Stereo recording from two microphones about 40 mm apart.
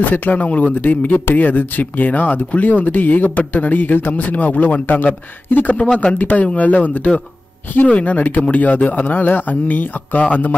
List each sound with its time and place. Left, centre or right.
0.0 s speech: left
9.0 s speech: left